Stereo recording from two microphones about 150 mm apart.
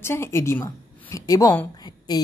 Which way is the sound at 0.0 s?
15° left (ahead or behind).